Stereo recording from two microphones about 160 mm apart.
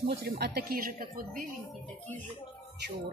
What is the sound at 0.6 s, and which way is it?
Speech, 70° right (ahead or behind).